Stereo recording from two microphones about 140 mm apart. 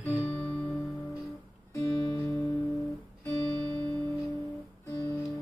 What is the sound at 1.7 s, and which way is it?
Music, 25° left (ahead or behind).